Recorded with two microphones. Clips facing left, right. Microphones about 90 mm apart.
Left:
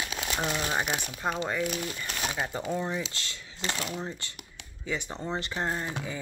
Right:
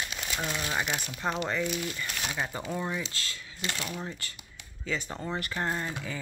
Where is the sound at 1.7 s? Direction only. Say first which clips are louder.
Even; 40° left (ahead or behind).